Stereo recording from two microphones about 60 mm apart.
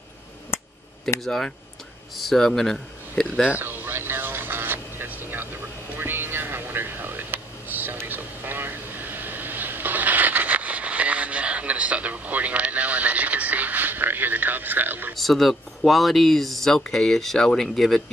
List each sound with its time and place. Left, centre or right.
1.2 s speech: centre
3.6 s a sound: right
15.1 s speech: centre